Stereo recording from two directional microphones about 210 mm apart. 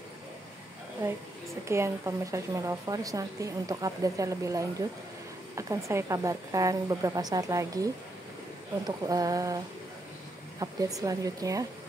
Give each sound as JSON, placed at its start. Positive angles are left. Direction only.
{"t": 1.7, "sound": "speech", "side_deg": -15}
{"t": 10.6, "sound": "speech", "side_deg": -15}